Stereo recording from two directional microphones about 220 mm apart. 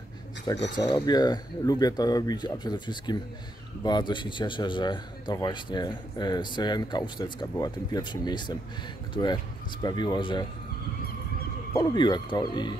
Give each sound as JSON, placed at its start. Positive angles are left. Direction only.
{"t": 0.7, "sound": "a man's voice", "side_deg": 20}
{"t": 11.7, "sound": "a man's voice", "side_deg": 20}